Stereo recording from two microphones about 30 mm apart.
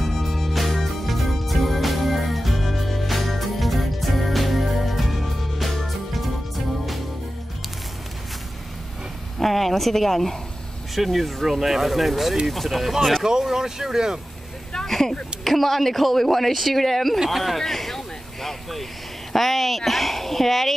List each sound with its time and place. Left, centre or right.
0.0 s music: centre
9.4 s a woman's voice: centre
13.2 s speech: centre
14.9 s a woman's voice: centre